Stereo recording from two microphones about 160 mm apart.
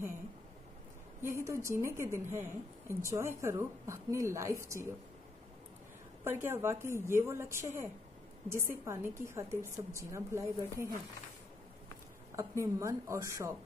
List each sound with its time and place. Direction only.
1.2 s a woman's voice: 20° right (ahead or behind)
6.2 s a woman's voice: 15° right (ahead or behind)
12.4 s a woman's voice: 20° right (ahead or behind)